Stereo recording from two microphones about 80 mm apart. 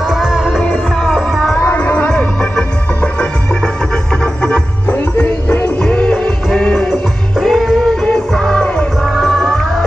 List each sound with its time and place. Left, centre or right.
0.0 s music: centre
1.7 s music: centre
4.8 s music: left; by 9.8 s centre